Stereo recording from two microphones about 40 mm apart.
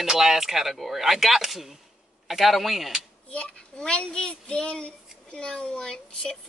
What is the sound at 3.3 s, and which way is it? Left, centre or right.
Speech, left.